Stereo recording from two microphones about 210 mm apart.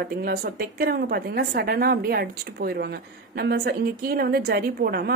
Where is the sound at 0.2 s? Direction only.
45° right (ahead or behind).